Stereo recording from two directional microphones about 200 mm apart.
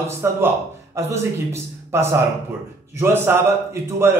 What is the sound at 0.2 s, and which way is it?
A man's voice, 10° right (ahead or behind).